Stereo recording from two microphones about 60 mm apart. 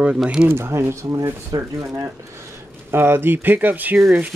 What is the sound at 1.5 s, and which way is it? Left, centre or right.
Speech, right.